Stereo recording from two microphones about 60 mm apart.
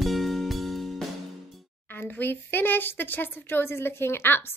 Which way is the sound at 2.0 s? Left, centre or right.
Left.